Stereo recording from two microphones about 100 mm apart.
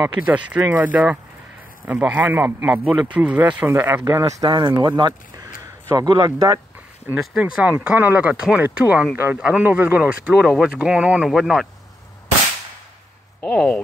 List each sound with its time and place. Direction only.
0.2 s speech: 15° right (ahead or behind)
4.2 s speech: 40° right (ahead or behind)
7.5 s speech: 15° right (ahead or behind)
11.2 s speech: centre (ahead or behind)
13.4 s speech: 15° left (ahead or behind)